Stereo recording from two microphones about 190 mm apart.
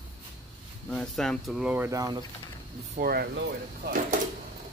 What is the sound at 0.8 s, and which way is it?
Speech, 5° left (ahead or behind).